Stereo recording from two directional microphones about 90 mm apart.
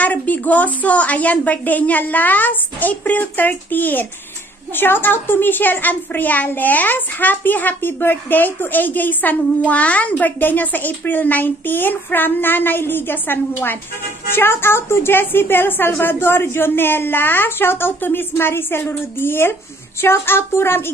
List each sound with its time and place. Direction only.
0.0 s a woman's voice: 15° left (ahead or behind)